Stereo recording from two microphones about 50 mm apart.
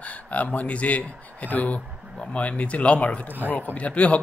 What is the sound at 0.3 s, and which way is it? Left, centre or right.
A man's voice, left.